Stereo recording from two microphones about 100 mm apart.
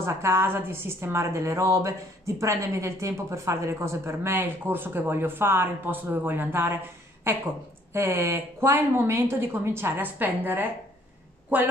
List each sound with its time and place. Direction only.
0.0 s a woman's voice: 25° right (ahead or behind)